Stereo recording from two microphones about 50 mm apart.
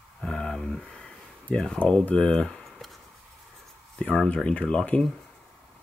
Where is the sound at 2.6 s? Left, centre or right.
Centre.